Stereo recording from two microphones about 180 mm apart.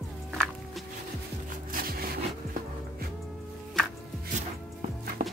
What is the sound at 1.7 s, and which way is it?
Wood, 55° right (ahead or behind).